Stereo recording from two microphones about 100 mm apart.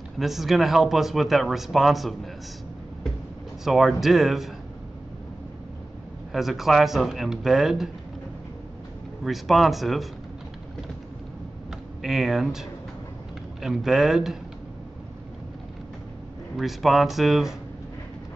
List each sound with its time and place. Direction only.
0.2 s speech: 5° right (ahead or behind)
3.6 s speech: 5° right (ahead or behind)
6.3 s speech: 5° right (ahead or behind)
9.2 s speech: centre (ahead or behind)
12.0 s speech: 5° right (ahead or behind)
16.5 s speech: centre (ahead or behind)